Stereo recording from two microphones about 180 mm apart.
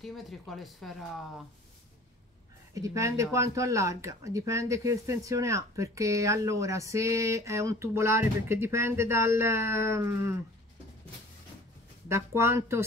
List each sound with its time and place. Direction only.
0.0 s speech: centre (ahead or behind)
2.7 s speech: 15° right (ahead or behind)
12.1 s speech: 15° right (ahead or behind)